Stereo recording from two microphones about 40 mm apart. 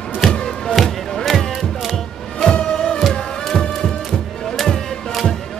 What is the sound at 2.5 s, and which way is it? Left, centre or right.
Music, centre.